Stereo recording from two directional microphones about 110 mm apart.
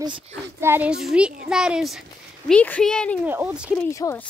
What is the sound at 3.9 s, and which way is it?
Speech, 30° left (ahead or behind).